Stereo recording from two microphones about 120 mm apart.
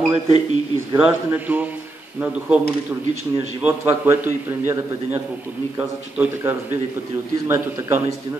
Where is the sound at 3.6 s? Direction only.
15° right (ahead or behind).